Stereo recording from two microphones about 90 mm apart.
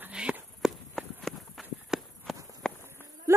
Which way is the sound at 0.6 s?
5° right (ahead or behind).